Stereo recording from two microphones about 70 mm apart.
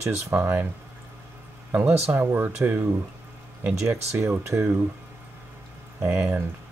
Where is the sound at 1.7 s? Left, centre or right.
Right.